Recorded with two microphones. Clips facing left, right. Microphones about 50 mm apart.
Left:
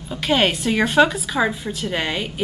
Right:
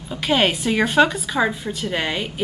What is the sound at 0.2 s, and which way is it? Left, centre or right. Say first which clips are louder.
A woman's voice: even; centre.